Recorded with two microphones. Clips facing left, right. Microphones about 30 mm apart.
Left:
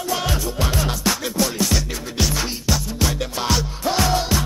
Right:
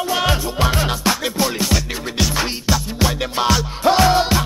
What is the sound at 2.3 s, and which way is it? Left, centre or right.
Music, right.